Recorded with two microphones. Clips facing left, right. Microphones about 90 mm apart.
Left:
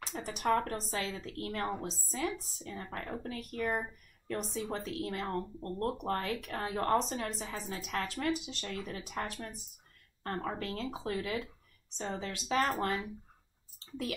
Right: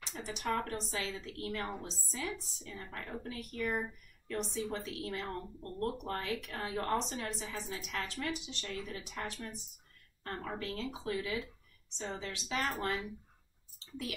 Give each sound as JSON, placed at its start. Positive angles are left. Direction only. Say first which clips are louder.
{"t": 0.0, "sound": "speech", "louder": "left 5 dB", "side_deg": 45}